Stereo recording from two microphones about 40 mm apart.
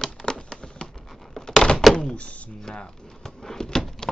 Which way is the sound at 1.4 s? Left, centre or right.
Centre.